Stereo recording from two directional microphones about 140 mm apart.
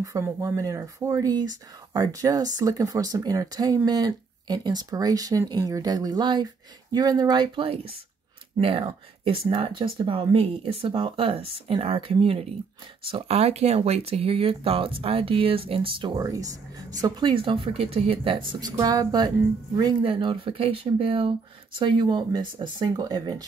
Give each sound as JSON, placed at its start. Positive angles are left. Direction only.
{"t": 0.0, "sound": "speech", "side_deg": -25}
{"t": 16.2, "sound": "speech", "side_deg": -25}